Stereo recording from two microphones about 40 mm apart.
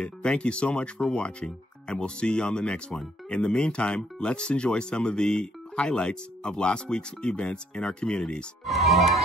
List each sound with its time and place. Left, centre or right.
0.0 s speech: left
8.6 s music: centre